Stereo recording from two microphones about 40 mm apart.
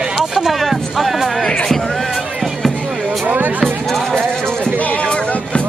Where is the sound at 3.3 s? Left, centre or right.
Right.